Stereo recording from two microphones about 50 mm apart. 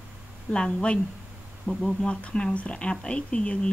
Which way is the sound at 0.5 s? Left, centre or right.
Centre.